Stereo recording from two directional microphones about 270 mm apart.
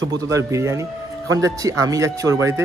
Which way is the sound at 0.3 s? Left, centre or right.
Centre.